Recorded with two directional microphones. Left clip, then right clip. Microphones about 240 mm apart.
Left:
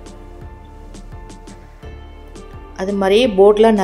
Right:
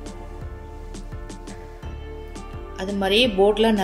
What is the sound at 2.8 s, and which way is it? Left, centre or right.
Speech, centre.